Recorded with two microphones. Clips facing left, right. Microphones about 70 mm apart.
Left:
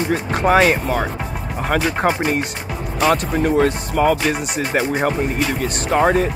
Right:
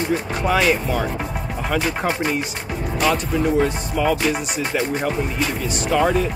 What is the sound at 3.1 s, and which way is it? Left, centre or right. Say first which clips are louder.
Speech: left 3 dB; left.